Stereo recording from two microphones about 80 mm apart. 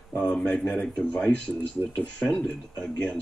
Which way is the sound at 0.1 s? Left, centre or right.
Left.